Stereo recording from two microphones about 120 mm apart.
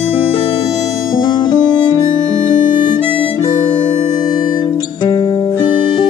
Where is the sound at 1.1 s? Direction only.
35° left (ahead or behind).